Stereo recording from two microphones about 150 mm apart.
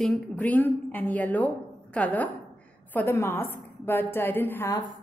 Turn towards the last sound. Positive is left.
turn(degrees=15)  # may be behind; listen again after turning